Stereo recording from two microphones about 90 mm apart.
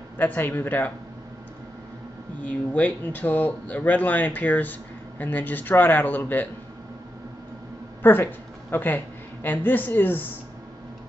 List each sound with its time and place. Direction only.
0.2 s speech: 20° left (ahead or behind)
2.4 s speech: 15° left (ahead or behind)
8.0 s a woman's voice: 20° left (ahead or behind)